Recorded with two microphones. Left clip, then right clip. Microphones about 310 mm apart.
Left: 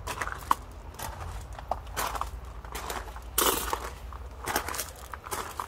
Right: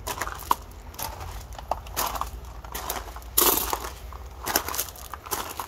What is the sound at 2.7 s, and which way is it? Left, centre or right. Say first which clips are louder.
Crushing: right 3 dB; right.